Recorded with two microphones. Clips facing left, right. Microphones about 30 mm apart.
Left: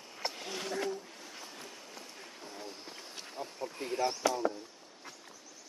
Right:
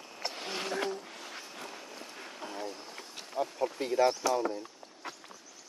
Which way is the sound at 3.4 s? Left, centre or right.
Right.